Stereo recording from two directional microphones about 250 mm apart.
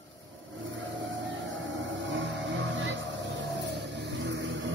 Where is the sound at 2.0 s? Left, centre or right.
Right.